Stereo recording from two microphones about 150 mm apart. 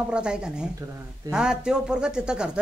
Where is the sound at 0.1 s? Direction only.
5° right (ahead or behind).